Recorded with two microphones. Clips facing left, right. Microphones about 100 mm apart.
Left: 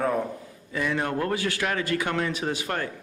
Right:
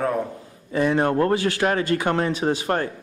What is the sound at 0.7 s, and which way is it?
Speech, 40° right (ahead or behind).